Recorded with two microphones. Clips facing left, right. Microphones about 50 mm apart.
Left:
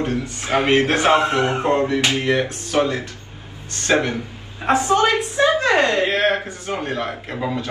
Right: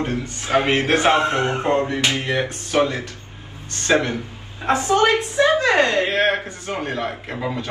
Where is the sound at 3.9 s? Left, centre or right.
Left.